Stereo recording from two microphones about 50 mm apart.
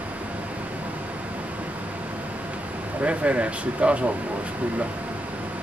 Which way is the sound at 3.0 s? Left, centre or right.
Right.